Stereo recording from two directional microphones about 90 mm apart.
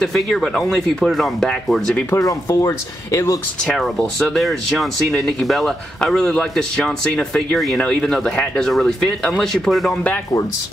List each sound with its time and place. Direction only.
0.0 s speech: 5° left (ahead or behind)
2.0 s speech: 40° left (ahead or behind)
3.6 s speech: 5° left (ahead or behind)